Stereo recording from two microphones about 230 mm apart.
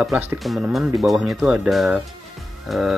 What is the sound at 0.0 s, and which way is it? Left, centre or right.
Speech, centre.